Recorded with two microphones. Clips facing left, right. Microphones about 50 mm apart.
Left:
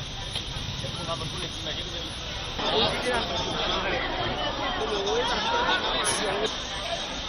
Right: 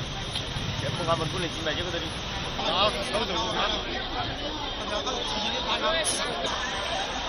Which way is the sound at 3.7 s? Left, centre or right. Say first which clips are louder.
Left 4 dB; left.